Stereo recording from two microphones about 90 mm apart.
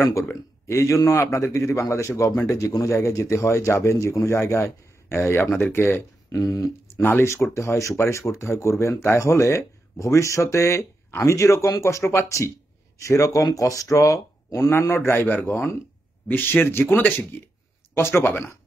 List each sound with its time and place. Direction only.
0.3 s a man's voice: 35° left (ahead or behind)
6.3 s speech: 40° left (ahead or behind)
7.0 s a man's voice: 25° left (ahead or behind)